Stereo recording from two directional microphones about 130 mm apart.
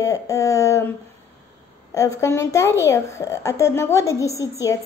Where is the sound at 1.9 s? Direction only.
25° left (ahead or behind).